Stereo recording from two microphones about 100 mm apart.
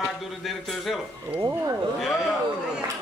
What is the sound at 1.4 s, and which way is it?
Speech, 35° right (ahead or behind).